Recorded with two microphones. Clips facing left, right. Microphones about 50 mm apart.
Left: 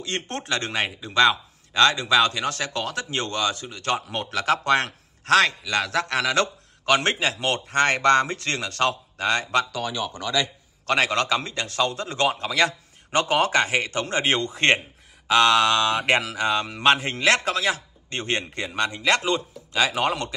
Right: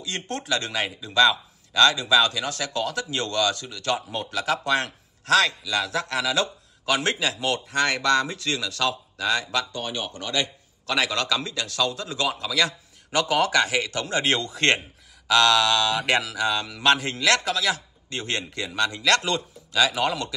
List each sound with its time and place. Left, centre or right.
0.0 s speech: left
5.6 s a man's voice: left
10.9 s speech: left; by 19.8 s centre
19.8 s speech: left